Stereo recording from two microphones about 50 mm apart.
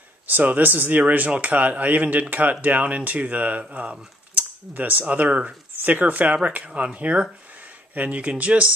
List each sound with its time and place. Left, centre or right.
0.3 s speech: right